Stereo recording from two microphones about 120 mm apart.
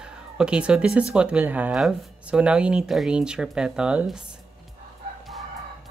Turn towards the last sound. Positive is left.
turn(degrees=-10)  # may be behind; listen again after turning